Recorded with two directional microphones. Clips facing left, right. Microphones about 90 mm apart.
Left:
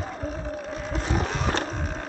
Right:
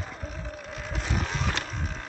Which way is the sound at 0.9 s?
30° left (ahead or behind).